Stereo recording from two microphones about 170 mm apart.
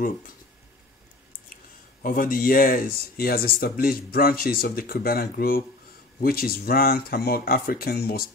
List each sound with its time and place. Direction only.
2.0 s speech: 55° left (ahead or behind)